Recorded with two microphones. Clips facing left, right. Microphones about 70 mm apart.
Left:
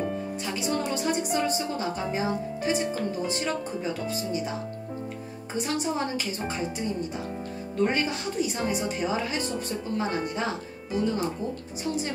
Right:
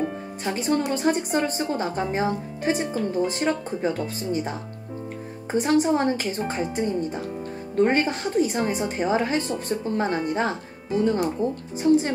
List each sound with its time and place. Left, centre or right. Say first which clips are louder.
0.4 s a woman's voice: right 7 dB; right